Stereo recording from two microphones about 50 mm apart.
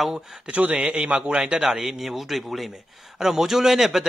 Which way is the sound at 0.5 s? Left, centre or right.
Right.